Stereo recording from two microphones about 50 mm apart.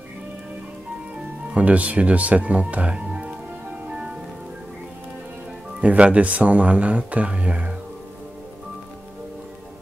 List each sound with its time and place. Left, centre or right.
1.5 s speech: right
5.8 s speech: right